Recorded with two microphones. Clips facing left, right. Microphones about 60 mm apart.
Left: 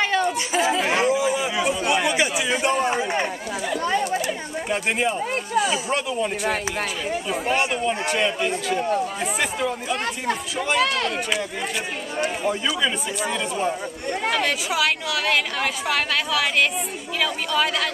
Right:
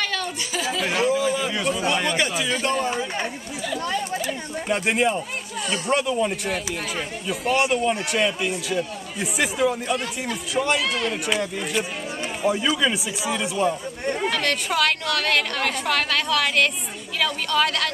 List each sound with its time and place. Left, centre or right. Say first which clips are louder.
0.0 s a sound: left 6 dB; left
1.1 s a sound: left 1 dB; centre
1.9 s speech: left 2 dB; centre
3.7 s chatter: left 3 dB; centre
4.3 s a woman's voice: even; centre
8.7 s speech: left 5 dB; left
9.2 s a woman's voice: right 2 dB; centre
10.8 s speech: left 3 dB; left
11.2 s a woman's voice: right 1 dB; centre
14.3 s a woman's voice: left 1 dB; centre